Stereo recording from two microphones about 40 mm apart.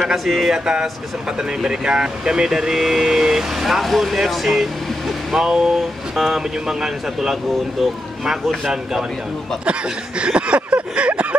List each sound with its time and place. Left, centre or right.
0.0 s speech: centre
0.5 s speech: centre
5.3 s speech: centre
9.7 s a sound: right